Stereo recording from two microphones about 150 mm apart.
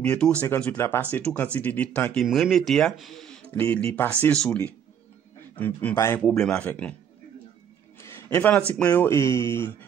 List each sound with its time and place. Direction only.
0.0 s speech: 5° left (ahead or behind)
2.2 s speech: centre (ahead or behind)
8.0 s a sound: 20° left (ahead or behind)
8.7 s speech: 10° left (ahead or behind)